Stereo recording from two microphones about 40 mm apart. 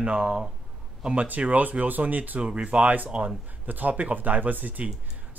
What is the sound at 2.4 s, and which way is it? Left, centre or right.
Speech, right.